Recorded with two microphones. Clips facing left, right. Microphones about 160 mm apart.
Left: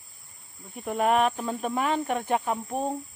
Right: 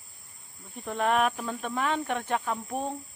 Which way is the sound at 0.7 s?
10° left (ahead or behind).